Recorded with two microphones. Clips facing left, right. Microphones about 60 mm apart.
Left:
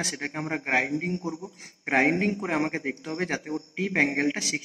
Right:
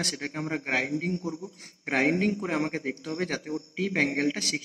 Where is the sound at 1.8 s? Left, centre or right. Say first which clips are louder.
Left 2 dB; left.